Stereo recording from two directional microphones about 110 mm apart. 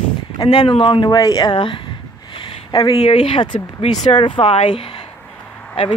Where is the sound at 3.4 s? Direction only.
45° left (ahead or behind).